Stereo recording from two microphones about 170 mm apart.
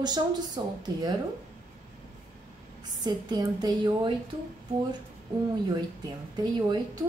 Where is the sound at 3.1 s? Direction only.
25° right (ahead or behind).